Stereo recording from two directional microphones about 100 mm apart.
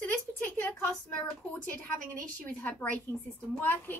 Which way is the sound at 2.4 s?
15° left (ahead or behind).